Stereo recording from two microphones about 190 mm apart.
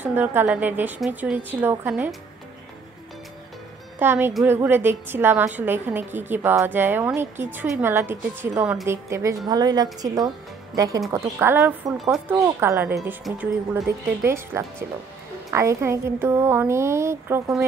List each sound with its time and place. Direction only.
0.0 s a woman's voice: 10° right (ahead or behind)
4.0 s a woman's voice: 10° right (ahead or behind)
12.0 s speech: centre (ahead or behind)
12.5 s a woman's voice: 10° right (ahead or behind)
13.2 s speech: centre (ahead or behind)
14.2 s a woman's voice: 15° right (ahead or behind)